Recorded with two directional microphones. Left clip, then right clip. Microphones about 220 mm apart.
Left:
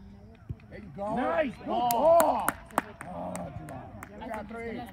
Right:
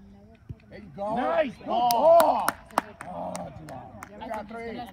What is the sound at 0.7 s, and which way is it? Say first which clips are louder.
Speech: right 3 dB; 20° right (ahead or behind).